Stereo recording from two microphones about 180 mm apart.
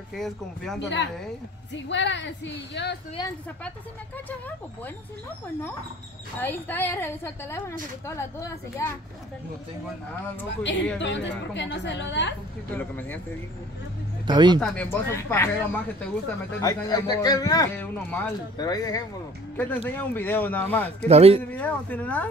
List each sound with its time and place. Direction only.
0.1 s speech: centre (ahead or behind)
0.7 s a woman's voice: 80° left
6.4 s speech: 10° left (ahead or behind)
10.5 s a woman's voice: 80° left
12.7 s speech: 10° left (ahead or behind)
14.2 s speech: 25° right (ahead or behind)
14.6 s a man's voice: 5° left (ahead or behind)
17.7 s speech: 10° left (ahead or behind)
18.6 s a man's voice: 20° left (ahead or behind)
19.5 s speech: 10° left (ahead or behind)
21.1 s speech: 35° right (ahead or behind)
21.4 s speech: 10° left (ahead or behind)